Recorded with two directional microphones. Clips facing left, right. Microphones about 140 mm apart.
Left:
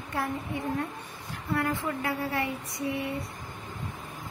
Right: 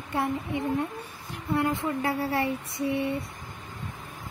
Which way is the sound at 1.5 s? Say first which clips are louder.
Right 3 dB; 25° right (ahead or behind).